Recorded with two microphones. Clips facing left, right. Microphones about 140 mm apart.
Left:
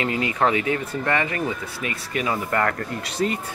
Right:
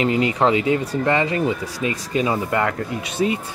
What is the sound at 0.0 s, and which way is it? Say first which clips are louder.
Speech: right 4 dB; 20° right (ahead or behind).